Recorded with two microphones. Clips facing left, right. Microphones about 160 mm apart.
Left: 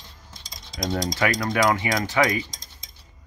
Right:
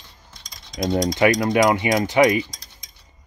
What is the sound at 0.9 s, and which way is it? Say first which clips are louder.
Speech: right 6 dB; 20° right (ahead or behind).